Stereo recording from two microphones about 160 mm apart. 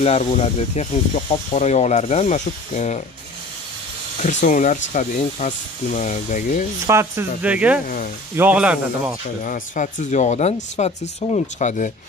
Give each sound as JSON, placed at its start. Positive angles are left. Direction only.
{"t": 0.0, "sound": "speech", "side_deg": 40}
{"t": 4.2, "sound": "speech", "side_deg": 50}
{"t": 6.9, "sound": "speech", "side_deg": -15}
{"t": 7.8, "sound": "speech", "side_deg": 60}
{"t": 8.4, "sound": "speech", "side_deg": -10}
{"t": 9.4, "sound": "speech", "side_deg": 55}